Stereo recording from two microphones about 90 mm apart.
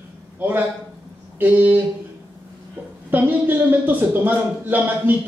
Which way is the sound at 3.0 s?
20° right (ahead or behind).